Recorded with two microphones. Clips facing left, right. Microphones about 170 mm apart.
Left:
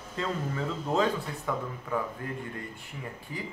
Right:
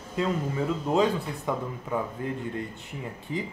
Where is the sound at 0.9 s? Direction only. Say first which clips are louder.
Right 3 dB; 20° right (ahead or behind).